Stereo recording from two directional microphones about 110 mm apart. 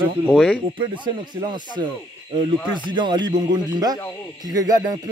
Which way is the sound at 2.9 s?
45° right (ahead or behind).